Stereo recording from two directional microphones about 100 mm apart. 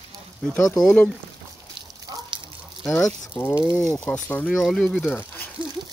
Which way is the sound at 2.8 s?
35° left (ahead or behind).